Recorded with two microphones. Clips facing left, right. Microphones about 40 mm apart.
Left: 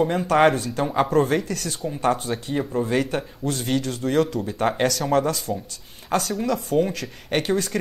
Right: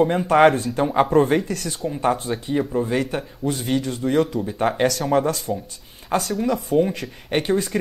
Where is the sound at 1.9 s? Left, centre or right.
Centre.